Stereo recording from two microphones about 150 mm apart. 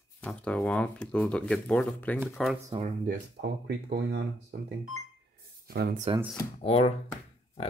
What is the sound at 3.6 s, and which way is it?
Speech, 90° right.